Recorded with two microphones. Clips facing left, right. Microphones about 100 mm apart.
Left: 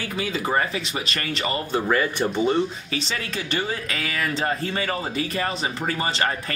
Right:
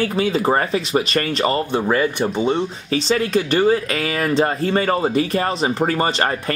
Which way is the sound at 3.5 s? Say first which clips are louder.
Right 9 dB; 40° right (ahead or behind).